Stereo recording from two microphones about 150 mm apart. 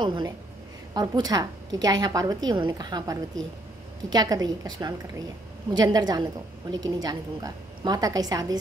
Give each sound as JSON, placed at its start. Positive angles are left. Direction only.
{"t": 0.0, "sound": "a woman's voice", "side_deg": -30}